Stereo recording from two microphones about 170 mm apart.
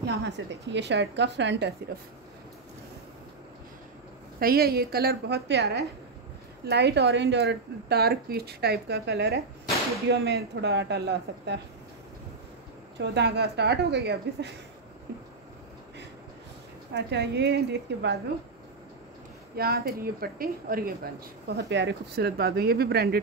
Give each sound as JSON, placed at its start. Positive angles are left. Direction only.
{"t": 0.0, "sound": "a woman's voice", "side_deg": -85}
{"t": 4.4, "sound": "speech", "side_deg": -60}
{"t": 13.0, "sound": "speech", "side_deg": -80}
{"t": 16.9, "sound": "speech", "side_deg": -80}
{"t": 17.9, "sound": "a woman's voice", "side_deg": -90}
{"t": 19.5, "sound": "speech", "side_deg": -65}